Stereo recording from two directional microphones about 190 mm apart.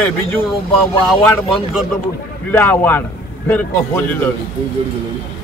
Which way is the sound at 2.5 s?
10° left (ahead or behind).